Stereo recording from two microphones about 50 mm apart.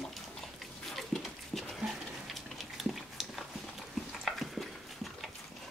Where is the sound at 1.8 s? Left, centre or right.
Centre.